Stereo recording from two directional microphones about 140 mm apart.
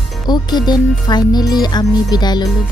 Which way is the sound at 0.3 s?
30° left (ahead or behind).